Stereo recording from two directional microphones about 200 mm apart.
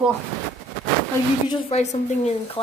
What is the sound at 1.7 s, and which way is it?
Speech, 35° left (ahead or behind).